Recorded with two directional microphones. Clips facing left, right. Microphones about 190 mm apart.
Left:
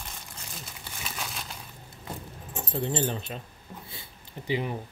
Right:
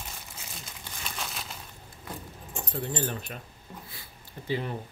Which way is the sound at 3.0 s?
25° left (ahead or behind).